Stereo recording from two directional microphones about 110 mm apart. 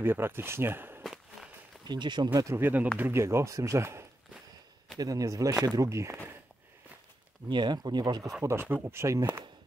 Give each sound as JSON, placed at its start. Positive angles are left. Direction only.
{"t": 0.0, "sound": "speech", "side_deg": -20}
{"t": 1.0, "sound": "walk", "side_deg": -5}
{"t": 1.9, "sound": "speech", "side_deg": -45}
{"t": 2.4, "sound": "speech", "side_deg": -20}
{"t": 7.4, "sound": "speech", "side_deg": -45}
{"t": 8.4, "sound": "speech", "side_deg": -20}